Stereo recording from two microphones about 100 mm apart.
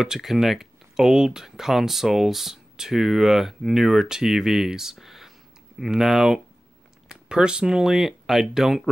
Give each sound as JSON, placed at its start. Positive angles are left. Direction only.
{"t": 0.0, "sound": "speech", "side_deg": -5}